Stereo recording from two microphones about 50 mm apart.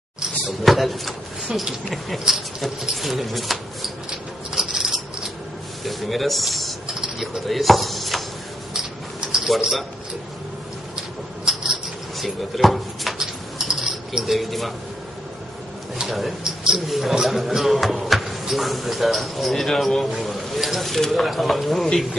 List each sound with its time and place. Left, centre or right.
0.5 s speech: centre
4.6 s a sound: centre
5.9 s speech: centre
9.3 s speech: centre
11.4 s a sound: centre
13.2 s dishes: centre
16.0 s speech: centre